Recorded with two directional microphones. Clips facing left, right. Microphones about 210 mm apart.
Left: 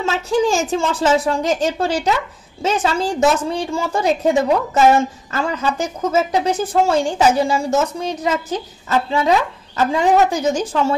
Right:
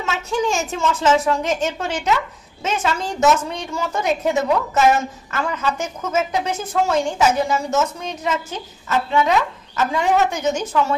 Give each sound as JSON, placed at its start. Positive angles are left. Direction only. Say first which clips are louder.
{"t": 0.0, "sound": "a woman's voice", "louder": "left 5 dB", "side_deg": 35}